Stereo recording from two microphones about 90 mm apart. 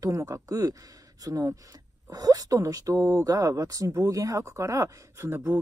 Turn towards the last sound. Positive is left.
turn(degrees=-25)  # may be behind; listen again after turning